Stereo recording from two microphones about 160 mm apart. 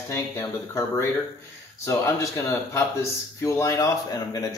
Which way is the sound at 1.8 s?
15° left (ahead or behind).